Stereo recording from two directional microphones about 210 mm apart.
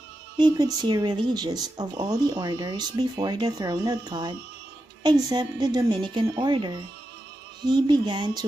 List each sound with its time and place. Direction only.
0.4 s speech: 20° right (ahead or behind)